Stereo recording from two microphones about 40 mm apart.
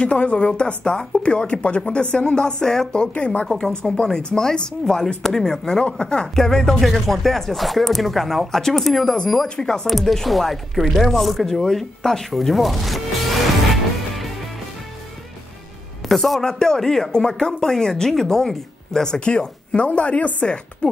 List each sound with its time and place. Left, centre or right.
0.0 s a woman's voice: left
5.0 s speech: centre
9.0 s speech: left
9.8 s speech: centre
11.6 s speech: centre
16.1 s speech: centre
19.1 s a woman's voice: left
20.4 s a woman's voice: left